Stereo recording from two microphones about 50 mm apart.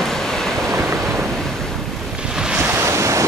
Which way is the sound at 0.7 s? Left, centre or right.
Right.